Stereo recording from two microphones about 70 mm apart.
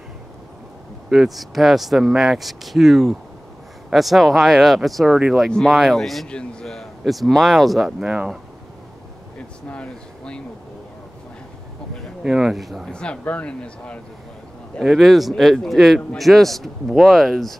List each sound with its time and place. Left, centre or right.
1.1 s speech: centre
9.7 s speech: centre
12.2 s speech: centre
12.9 s speech: centre
14.8 s speech: centre